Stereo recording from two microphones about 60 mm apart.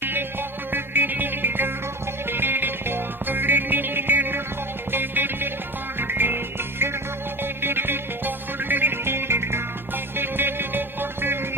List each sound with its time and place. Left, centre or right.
0.7 s music: right